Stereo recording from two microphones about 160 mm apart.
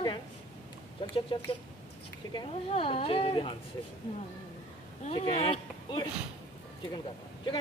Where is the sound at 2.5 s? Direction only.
35° left (ahead or behind).